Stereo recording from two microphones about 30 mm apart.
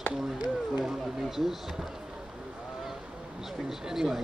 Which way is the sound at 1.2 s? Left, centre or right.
Centre.